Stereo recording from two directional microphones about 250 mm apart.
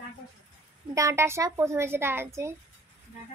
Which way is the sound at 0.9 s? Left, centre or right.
Centre.